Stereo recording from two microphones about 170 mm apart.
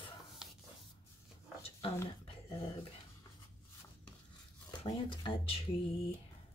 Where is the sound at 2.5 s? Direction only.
30° left (ahead or behind).